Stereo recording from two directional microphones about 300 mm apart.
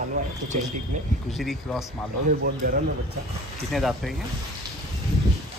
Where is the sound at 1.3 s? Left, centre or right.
Centre.